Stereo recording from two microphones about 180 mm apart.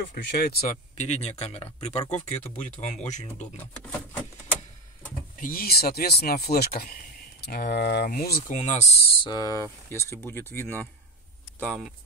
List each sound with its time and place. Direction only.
0.1 s speech: 65° left (ahead or behind)
0.7 s speech: 40° left (ahead or behind)
3.5 s a sound: 10° left (ahead or behind)
5.4 s speech: 55° left (ahead or behind)
8.5 s speech: 40° left (ahead or behind)
9.3 s speech: 20° left (ahead or behind); by 11.9 s 5° left (ahead or behind)